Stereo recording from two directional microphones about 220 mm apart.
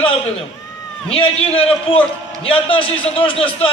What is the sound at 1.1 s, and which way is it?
A man's voice, 25° left (ahead or behind).